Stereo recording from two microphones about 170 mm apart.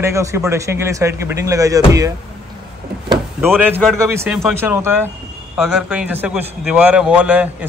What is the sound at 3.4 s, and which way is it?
A man's voice, 10° right (ahead or behind).